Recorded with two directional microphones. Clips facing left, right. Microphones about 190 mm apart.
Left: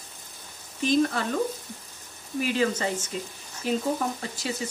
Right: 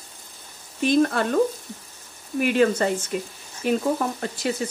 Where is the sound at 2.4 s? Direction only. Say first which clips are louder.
Right 6 dB; 60° right (ahead or behind).